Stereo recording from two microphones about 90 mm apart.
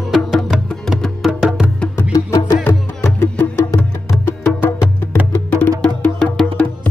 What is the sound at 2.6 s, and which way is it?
Music, 20° left (ahead or behind).